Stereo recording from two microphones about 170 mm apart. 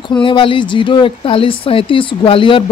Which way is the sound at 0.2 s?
30° left (ahead or behind).